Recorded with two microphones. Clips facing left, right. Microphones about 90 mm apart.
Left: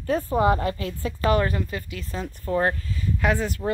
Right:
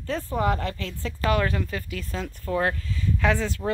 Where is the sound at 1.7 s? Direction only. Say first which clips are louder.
Even; 5° left (ahead or behind).